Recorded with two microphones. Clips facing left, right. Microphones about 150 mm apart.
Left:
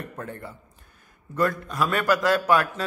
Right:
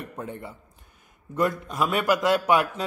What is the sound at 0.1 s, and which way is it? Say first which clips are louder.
A man's voice: right 1 dB; 15° right (ahead or behind).